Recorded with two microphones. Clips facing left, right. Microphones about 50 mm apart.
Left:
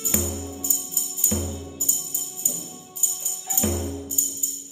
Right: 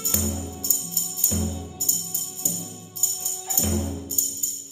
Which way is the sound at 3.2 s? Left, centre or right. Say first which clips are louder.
Left 3 dB; centre.